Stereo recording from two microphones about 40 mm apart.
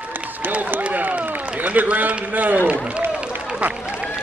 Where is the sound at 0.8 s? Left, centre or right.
Right.